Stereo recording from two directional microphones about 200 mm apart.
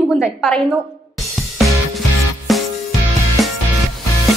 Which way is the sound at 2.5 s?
Centre (ahead or behind).